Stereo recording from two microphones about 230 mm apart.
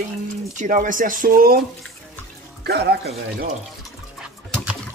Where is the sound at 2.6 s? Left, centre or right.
Right.